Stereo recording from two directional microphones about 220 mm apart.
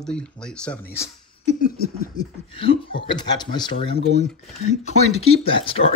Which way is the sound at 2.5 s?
25° left (ahead or behind).